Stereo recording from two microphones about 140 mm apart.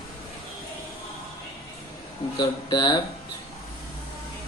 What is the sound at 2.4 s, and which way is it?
Speech, 30° left (ahead or behind).